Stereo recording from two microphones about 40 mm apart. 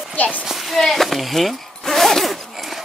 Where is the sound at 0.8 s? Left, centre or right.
Centre.